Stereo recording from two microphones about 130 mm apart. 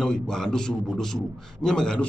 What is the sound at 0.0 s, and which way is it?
A man's voice, 5° left (ahead or behind).